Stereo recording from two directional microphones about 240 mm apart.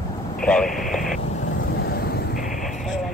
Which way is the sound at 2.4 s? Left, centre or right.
Centre.